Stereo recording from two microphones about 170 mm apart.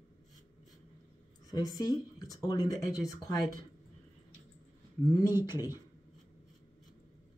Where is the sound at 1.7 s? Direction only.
20° left (ahead or behind).